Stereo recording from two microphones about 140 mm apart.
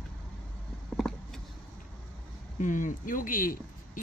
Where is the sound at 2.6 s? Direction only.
65° left (ahead or behind).